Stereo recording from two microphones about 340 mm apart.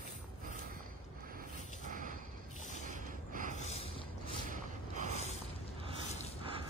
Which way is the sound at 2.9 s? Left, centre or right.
Right.